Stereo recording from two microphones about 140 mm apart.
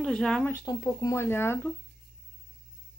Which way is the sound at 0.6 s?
25° left (ahead or behind).